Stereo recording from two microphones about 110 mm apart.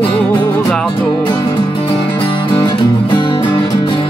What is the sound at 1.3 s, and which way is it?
Music, 30° left (ahead or behind).